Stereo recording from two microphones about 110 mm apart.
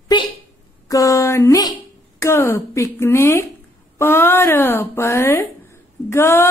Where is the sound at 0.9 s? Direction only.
30° left (ahead or behind).